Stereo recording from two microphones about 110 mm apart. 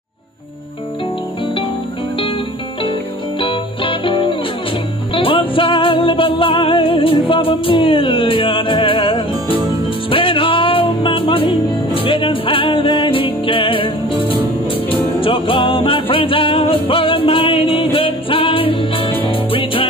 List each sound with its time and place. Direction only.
3.3 s music: 55° left (ahead or behind)